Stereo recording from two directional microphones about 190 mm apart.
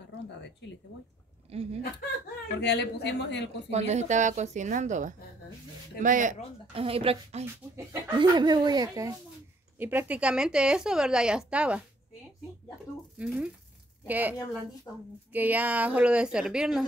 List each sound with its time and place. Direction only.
1.5 s a woman's voice: 30° right (ahead or behind)
2.6 s a man's voice: 65° left (ahead or behind)
3.7 s a woman's voice: 35° right (ahead or behind)
6.7 s a woman's voice: 30° right (ahead or behind)
9.8 s a woman's voice: 10° right (ahead or behind)
13.2 s a woman's voice: 5° right (ahead or behind)